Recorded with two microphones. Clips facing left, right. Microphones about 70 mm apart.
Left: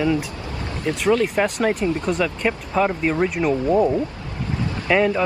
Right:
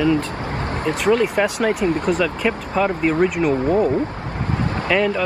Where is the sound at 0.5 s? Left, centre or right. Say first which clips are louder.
Right 2 dB; right.